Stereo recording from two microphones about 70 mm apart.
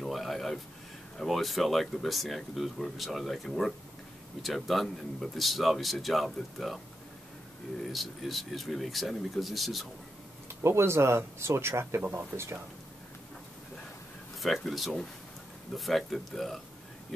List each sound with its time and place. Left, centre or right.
0.0 s a sound: centre
1.1 s speech: centre
7.9 s speech: centre
10.5 s speech: right
14.4 s speech: centre